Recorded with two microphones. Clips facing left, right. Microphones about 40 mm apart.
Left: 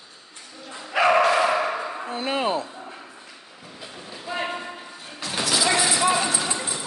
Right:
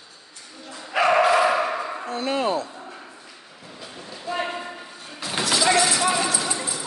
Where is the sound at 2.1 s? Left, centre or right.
Centre.